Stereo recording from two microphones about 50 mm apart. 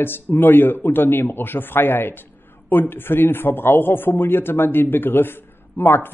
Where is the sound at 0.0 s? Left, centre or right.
Left.